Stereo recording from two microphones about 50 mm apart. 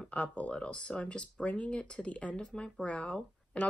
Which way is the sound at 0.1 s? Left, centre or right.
Left.